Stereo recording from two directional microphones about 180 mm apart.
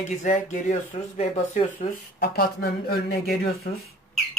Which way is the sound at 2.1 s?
60° left (ahead or behind).